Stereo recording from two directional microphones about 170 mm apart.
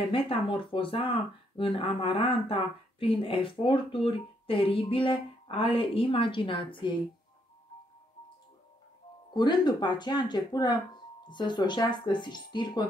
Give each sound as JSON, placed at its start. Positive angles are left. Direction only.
{"t": 0.1, "sound": "speech", "side_deg": 30}
{"t": 9.3, "sound": "speech", "side_deg": 25}